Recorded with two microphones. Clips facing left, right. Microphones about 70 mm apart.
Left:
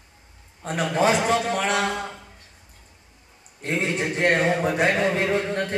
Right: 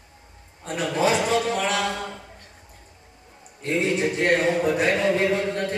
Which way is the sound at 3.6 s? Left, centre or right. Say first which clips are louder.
Right 2 dB; left.